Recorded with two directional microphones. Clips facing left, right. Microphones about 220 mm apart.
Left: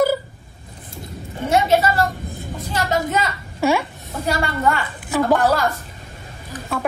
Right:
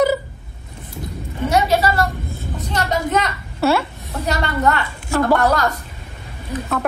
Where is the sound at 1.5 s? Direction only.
25° left (ahead or behind).